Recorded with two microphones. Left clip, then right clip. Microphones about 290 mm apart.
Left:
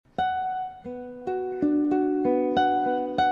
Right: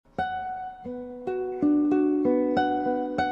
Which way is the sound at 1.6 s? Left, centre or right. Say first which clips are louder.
Right 1 dB; left.